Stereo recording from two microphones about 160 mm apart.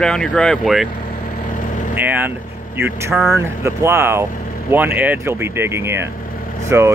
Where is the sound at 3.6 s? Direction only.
15° right (ahead or behind).